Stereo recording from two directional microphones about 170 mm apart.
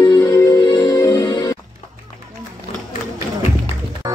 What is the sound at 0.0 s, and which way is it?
Music, 20° left (ahead or behind).